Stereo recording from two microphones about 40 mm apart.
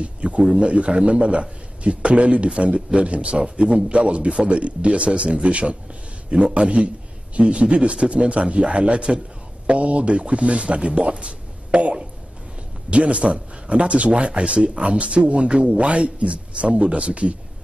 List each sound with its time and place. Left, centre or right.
0.0 s a man's voice: right